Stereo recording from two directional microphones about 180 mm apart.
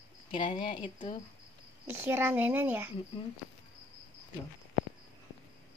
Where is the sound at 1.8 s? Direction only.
10° right (ahead or behind).